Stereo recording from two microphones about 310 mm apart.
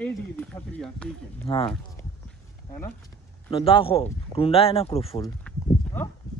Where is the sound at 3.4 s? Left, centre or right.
Centre.